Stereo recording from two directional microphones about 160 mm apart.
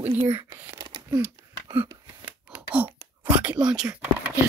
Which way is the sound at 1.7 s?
10° right (ahead or behind).